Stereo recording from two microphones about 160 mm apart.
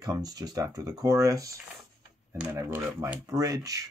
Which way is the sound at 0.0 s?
25° right (ahead or behind).